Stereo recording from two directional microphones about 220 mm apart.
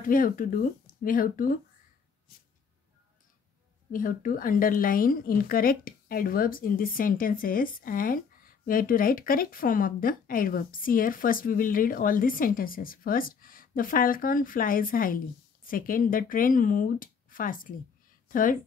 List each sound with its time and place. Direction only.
0.0 s speech: 40° left (ahead or behind)
3.9 s speech: 40° left (ahead or behind)